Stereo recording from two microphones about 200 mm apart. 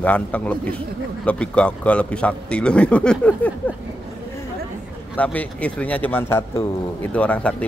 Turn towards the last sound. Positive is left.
turn(degrees=5)  # may be behind; listen again after turning